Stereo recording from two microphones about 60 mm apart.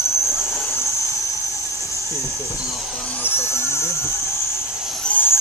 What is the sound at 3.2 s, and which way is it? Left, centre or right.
Speech, left.